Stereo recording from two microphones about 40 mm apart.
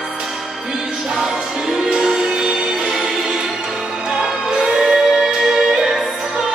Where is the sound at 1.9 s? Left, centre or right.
Centre.